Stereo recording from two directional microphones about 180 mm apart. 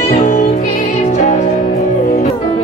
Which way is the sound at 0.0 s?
40° left (ahead or behind).